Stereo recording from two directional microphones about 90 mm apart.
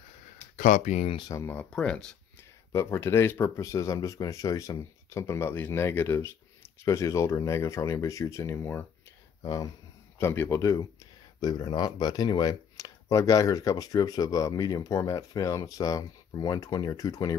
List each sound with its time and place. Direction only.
1.5 s speech: 15° left (ahead or behind)
2.7 s speech: 30° left (ahead or behind)
9.4 s speech: 40° left (ahead or behind)
10.1 s speech: 25° left (ahead or behind)
10.6 s speech: 40° left (ahead or behind)
11.4 s speech: 50° left (ahead or behind)